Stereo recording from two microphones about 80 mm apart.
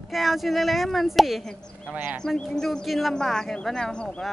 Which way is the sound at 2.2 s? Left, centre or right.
Centre.